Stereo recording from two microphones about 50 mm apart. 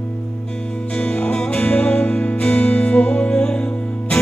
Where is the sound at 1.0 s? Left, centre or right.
Left.